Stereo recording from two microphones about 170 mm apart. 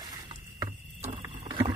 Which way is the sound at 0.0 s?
25° right (ahead or behind).